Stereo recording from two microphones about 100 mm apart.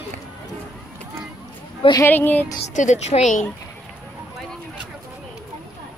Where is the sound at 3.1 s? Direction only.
80° left.